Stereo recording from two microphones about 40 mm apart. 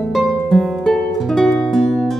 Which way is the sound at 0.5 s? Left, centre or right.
Centre.